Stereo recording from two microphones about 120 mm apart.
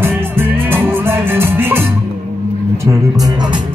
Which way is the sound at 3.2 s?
35° right (ahead or behind).